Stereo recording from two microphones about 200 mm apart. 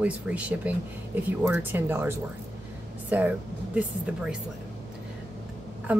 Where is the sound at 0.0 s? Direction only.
5° right (ahead or behind).